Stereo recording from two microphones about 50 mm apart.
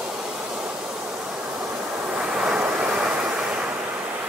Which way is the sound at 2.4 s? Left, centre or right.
Centre.